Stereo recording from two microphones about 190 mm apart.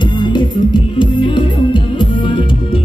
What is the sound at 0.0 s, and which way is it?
Music, 25° left (ahead or behind).